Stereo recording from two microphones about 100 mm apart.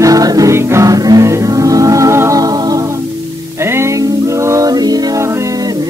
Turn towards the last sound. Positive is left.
turn(degrees=-40)  # may be behind; listen again after turning